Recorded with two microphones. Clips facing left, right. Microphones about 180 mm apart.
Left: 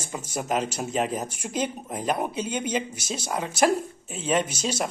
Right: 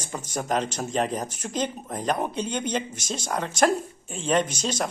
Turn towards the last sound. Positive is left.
turn(degrees=10)  # may be behind; listen again after turning